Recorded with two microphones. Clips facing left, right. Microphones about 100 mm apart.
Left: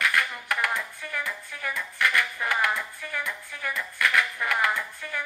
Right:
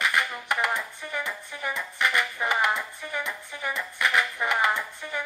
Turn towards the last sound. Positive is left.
turn(degrees=-20)  # may be behind; listen again after turning